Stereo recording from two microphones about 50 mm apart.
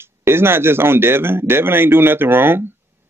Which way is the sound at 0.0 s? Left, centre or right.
Right.